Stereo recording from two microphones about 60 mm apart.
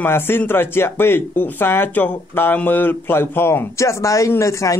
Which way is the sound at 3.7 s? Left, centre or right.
Left.